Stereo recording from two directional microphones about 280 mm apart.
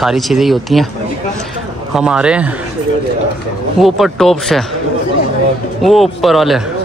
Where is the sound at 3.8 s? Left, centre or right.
Centre.